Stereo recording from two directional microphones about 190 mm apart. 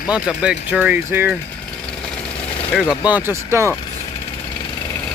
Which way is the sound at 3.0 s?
10° right (ahead or behind).